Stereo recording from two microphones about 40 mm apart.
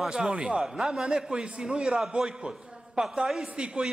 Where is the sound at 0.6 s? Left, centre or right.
Centre.